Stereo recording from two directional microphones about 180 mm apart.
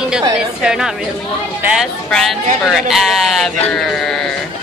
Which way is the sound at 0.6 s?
5° right (ahead or behind).